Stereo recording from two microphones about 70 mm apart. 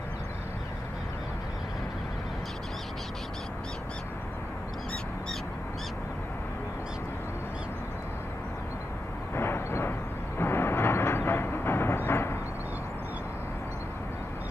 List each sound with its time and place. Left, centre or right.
9.3 s vehicle: left